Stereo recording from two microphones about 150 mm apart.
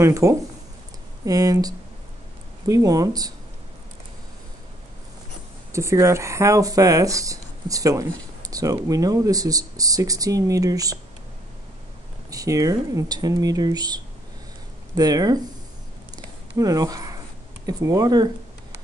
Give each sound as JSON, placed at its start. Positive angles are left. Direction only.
{"t": 0.0, "sound": "speech", "side_deg": -20}
{"t": 5.7, "sound": "speech", "side_deg": -20}
{"t": 12.3, "sound": "speech", "side_deg": -25}
{"t": 16.5, "sound": "speech", "side_deg": -25}